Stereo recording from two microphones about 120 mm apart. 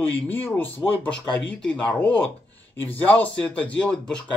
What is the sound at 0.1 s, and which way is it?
Speech, 15° left (ahead or behind).